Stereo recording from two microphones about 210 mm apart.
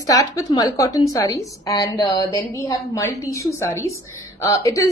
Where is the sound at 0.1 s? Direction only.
15° left (ahead or behind).